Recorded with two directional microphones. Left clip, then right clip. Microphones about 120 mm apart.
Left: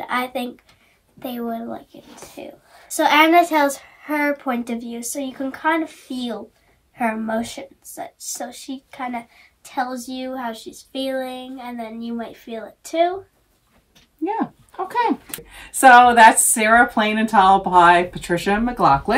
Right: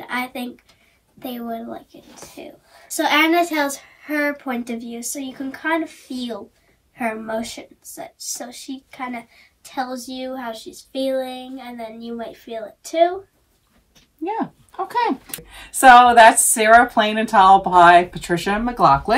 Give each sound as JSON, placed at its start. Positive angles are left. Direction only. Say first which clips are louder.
{"t": 0.0, "sound": "speech", "louder": "left 3 dB", "side_deg": 30}
{"t": 1.2, "sound": "a woman's voice", "louder": "left 2 dB", "side_deg": 15}
{"t": 14.2, "sound": "speech", "louder": "left 1 dB", "side_deg": -5}